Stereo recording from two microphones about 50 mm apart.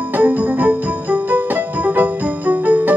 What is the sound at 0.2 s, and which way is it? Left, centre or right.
Music, right.